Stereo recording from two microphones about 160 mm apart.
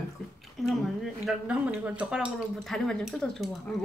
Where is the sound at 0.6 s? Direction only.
Centre (ahead or behind).